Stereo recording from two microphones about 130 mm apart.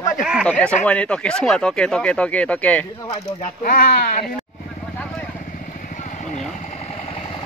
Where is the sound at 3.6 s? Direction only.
90° left.